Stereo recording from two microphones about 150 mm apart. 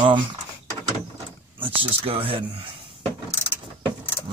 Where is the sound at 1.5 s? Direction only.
35° right (ahead or behind).